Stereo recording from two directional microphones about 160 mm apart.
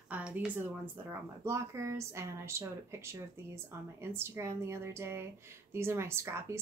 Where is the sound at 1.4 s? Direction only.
20° right (ahead or behind).